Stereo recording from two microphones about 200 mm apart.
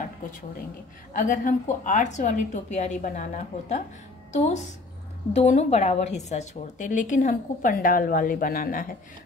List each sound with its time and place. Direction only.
1.1 s a woman's voice: 40° left (ahead or behind)